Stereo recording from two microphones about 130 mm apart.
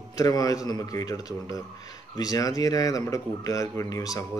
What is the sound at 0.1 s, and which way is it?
A man's voice, 25° left (ahead or behind).